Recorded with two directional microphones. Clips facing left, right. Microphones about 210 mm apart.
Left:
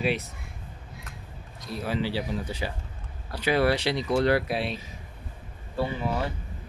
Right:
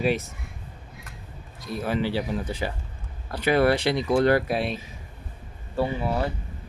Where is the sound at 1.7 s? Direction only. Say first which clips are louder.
Right 3 dB; 50° right (ahead or behind).